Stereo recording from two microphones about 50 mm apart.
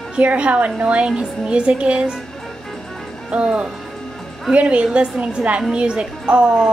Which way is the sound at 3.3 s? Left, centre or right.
Right.